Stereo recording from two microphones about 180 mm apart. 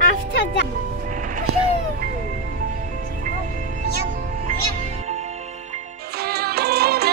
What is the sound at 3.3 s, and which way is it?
Music, 50° right (ahead or behind).